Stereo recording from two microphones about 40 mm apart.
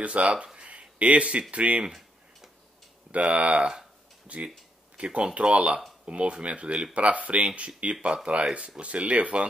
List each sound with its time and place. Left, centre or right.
0.0 s speech: right
0.6 s a sound: right
1.5 s speech: right
1.9 s tick-tock: centre
3.1 s speech: right